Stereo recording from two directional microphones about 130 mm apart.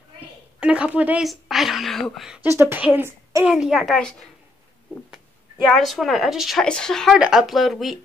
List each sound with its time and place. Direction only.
0.6 s a woman's voice: 10° right (ahead or behind)
2.4 s a woman's voice: 20° right (ahead or behind)
3.4 s a woman's voice: 5° right (ahead or behind)
5.7 s a woman's voice: centre (ahead or behind)